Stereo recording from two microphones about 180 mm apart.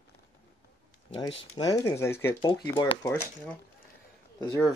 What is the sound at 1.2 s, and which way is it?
Speech, 25° left (ahead or behind).